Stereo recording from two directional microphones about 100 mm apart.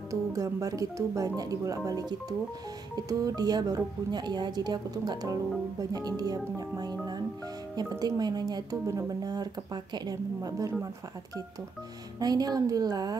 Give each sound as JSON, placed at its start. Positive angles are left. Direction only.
{"t": 0.1, "sound": "speech", "side_deg": -35}
{"t": 8.0, "sound": "speech", "side_deg": -40}
{"t": 12.2, "sound": "speech", "side_deg": -40}